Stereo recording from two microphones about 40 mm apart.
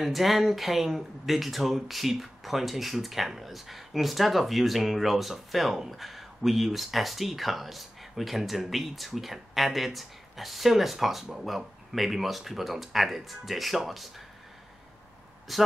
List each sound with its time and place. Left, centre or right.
0.0 s speech: centre
15.5 s speech: centre